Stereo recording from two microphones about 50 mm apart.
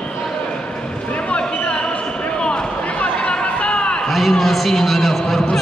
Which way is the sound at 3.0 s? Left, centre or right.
Centre.